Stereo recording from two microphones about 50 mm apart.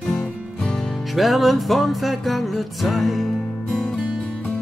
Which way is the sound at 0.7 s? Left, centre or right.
Centre.